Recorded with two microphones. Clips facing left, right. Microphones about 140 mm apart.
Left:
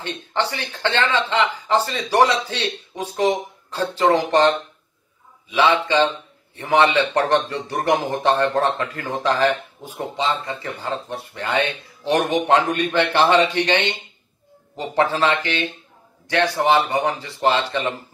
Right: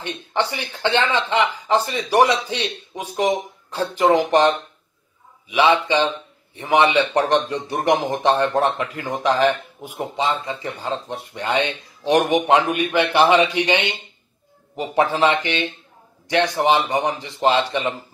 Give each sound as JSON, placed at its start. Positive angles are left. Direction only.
{"t": 0.0, "sound": "a man's voice", "side_deg": -15}